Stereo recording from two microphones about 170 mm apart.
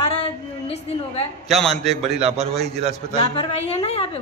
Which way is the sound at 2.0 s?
40° right (ahead or behind).